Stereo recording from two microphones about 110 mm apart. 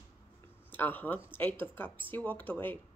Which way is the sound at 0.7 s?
15° left (ahead or behind).